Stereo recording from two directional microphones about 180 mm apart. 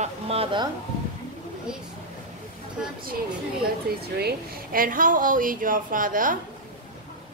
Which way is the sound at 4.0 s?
55° right (ahead or behind).